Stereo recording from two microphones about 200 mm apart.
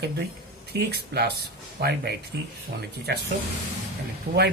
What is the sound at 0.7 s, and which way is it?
Speech, 55° right (ahead or behind).